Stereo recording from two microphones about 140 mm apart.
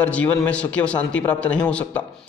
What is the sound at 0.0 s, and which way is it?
A man's voice, 10° left (ahead or behind).